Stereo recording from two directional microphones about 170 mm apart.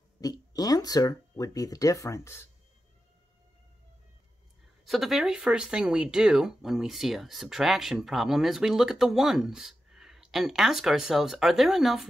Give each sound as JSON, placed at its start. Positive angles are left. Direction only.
{"t": 0.2, "sound": "speech", "side_deg": 20}
{"t": 4.8, "sound": "speech", "side_deg": 0}